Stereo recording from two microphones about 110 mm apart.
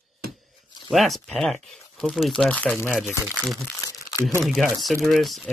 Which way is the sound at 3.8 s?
30° left (ahead or behind).